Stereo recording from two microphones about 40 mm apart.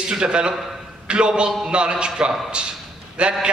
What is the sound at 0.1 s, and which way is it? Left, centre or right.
A man's voice, right.